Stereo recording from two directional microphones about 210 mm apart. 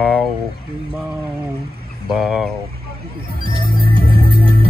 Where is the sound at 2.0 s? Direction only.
Centre (ahead or behind).